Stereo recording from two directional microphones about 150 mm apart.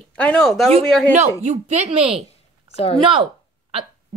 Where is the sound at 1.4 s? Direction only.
50° right (ahead or behind).